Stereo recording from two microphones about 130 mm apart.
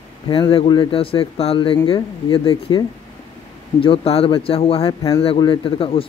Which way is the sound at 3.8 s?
45° left (ahead or behind).